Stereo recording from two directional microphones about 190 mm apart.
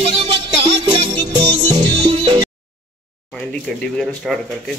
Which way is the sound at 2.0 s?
20° right (ahead or behind).